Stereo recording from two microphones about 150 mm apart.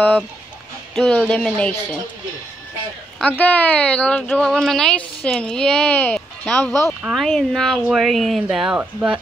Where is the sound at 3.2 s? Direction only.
10° left (ahead or behind).